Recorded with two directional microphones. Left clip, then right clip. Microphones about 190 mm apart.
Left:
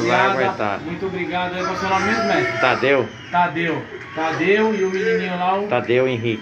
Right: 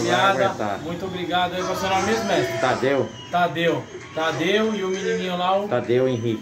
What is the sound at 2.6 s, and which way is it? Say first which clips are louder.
Speech: left 7 dB; 15° right (ahead or behind).